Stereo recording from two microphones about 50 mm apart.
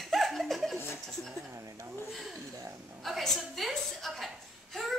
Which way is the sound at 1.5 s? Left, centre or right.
Right.